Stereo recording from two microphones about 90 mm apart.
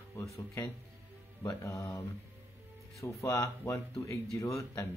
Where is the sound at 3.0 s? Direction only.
35° left (ahead or behind).